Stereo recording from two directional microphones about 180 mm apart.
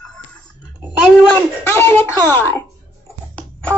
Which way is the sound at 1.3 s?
10° left (ahead or behind).